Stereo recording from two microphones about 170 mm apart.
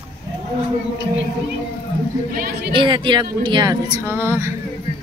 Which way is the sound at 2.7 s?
30° right (ahead or behind).